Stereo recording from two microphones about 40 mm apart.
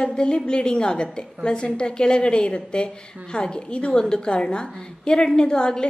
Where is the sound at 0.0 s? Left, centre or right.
Centre.